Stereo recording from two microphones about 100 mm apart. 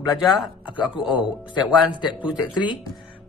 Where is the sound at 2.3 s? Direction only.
45° left (ahead or behind).